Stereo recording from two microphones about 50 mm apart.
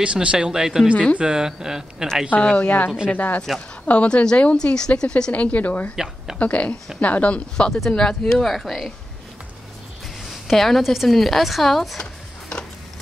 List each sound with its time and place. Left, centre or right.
0.0 s speech: right
2.5 s a woman's voice: left; by 8.5 s centre
8.5 s speech: centre
10.2 s speech: centre
12.0 s a sound: centre